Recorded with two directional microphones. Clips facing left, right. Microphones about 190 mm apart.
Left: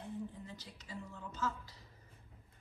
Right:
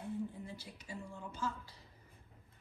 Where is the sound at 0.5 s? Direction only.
10° right (ahead or behind).